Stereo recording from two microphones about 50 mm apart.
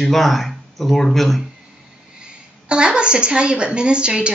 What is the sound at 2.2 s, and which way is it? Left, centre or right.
A woman's voice, centre.